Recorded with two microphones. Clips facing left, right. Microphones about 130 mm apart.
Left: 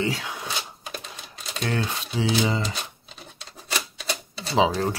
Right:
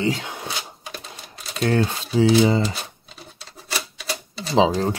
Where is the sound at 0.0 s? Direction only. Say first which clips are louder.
Right 3 dB; 25° right (ahead or behind).